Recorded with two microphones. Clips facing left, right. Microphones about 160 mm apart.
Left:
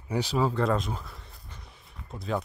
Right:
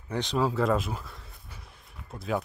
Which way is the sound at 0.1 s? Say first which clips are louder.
Left 1 dB; 5° left (ahead or behind).